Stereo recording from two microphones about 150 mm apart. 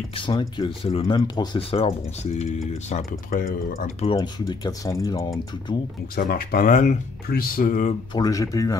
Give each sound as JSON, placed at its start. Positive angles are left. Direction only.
{"t": 0.1, "sound": "speech", "side_deg": 30}
{"t": 3.3, "sound": "speech", "side_deg": 70}
{"t": 4.0, "sound": "speech", "side_deg": 30}
{"t": 6.1, "sound": "speech", "side_deg": 80}
{"t": 8.1, "sound": "speech", "side_deg": 25}